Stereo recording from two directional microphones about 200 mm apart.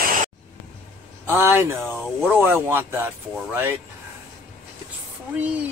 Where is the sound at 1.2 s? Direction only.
10° right (ahead or behind).